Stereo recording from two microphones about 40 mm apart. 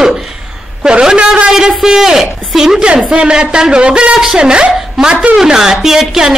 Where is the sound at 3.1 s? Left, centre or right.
Right.